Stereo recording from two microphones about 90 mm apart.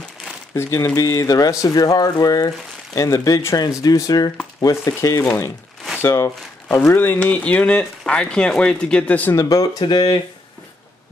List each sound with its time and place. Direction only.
0.6 s speech: 35° left (ahead or behind)
5.9 s crumpling: 25° left (ahead or behind)
7.0 s speech: 20° left (ahead or behind)
9.3 s speech: 40° left (ahead or behind)